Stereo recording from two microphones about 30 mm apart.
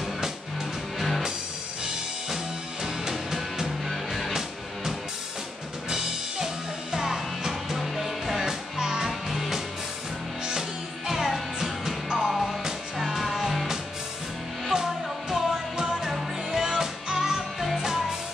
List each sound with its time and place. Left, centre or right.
0.9 s music: centre
2.2 s music: centre
3.9 s music: centre
4.3 s music: centre
11.1 s music: centre